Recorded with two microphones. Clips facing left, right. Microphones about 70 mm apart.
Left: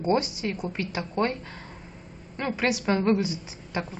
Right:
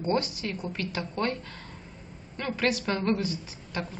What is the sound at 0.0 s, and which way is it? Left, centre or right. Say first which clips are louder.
Speech: left 3 dB; centre.